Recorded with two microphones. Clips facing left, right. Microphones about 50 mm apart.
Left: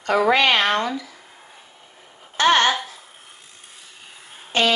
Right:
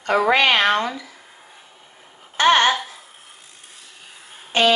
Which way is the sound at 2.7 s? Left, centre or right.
Centre.